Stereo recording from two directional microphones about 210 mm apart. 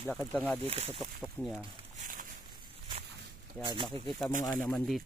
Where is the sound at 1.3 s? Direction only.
5° left (ahead or behind).